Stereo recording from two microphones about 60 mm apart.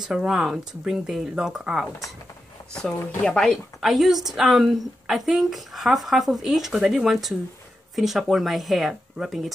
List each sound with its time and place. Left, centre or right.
0.0 s a woman's voice: centre
2.7 s speech: centre
3.8 s a woman's voice: centre